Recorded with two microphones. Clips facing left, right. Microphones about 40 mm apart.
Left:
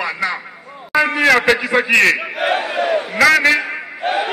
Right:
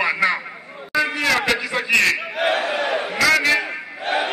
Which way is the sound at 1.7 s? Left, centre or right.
Left.